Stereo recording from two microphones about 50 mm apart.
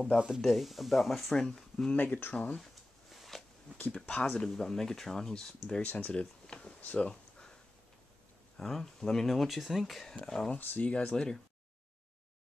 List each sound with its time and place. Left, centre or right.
0.4 s speech: centre
1.5 s speech: centre
2.0 s speech: left
2.3 s speech: left
3.1 s a sound: centre
3.9 s speech: centre
5.7 s speech: left
6.8 s speech: left
7.1 s a sound: centre
8.5 s speech: centre
10.6 s speech: left
11.1 s speech: centre